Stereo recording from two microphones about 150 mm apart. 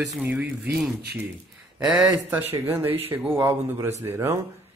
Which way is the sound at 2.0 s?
15° right (ahead or behind).